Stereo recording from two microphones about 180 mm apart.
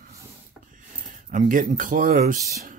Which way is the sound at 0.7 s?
45° right (ahead or behind).